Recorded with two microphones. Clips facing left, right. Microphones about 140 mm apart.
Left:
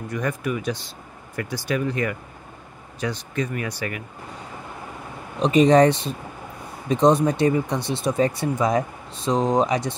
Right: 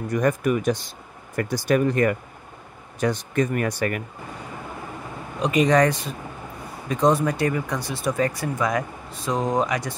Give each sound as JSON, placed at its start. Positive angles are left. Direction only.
{"t": 0.1, "sound": "speech", "side_deg": -45}
{"t": 5.4, "sound": "speech", "side_deg": 30}